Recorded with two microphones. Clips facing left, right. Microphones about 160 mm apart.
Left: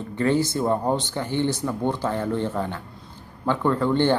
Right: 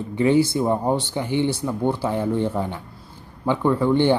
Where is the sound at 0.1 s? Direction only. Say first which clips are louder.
Right 4 dB; 15° right (ahead or behind).